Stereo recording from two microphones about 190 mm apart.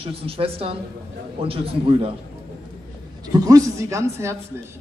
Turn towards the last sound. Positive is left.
turn(degrees=-15)  # may be behind; listen again after turning